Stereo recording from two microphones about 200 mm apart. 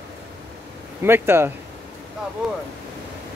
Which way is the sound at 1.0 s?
10° right (ahead or behind).